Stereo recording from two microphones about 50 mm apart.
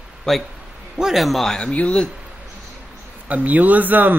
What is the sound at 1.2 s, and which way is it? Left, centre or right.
Speech, centre.